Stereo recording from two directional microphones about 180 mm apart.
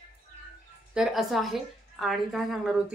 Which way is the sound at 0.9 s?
Centre (ahead or behind).